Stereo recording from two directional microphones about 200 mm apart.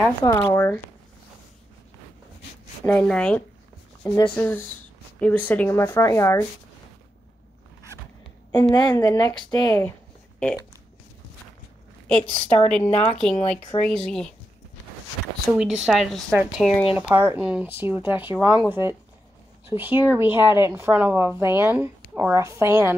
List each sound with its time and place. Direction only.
0.2 s speech: 20° left (ahead or behind)
2.8 s speech: 10° left (ahead or behind)
4.0 s speech: 20° left (ahead or behind)
4.4 s speech: 10° left (ahead or behind)
8.7 s a woman's voice: 20° left (ahead or behind)
12.1 s speech: 5° left (ahead or behind)
13.3 s speech: 35° left (ahead or behind)
13.8 s speech: 5° left (ahead or behind)
15.5 s speech: centre (ahead or behind)